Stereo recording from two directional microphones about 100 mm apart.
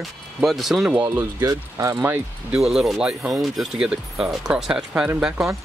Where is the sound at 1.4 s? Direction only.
35° right (ahead or behind).